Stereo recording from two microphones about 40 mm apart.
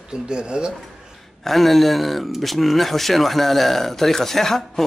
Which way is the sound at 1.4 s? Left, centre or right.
Centre.